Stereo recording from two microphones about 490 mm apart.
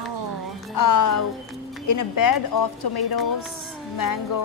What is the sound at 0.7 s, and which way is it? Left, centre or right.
A woman's voice, left.